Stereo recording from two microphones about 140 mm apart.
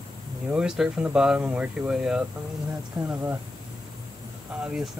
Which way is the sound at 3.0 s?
15° right (ahead or behind).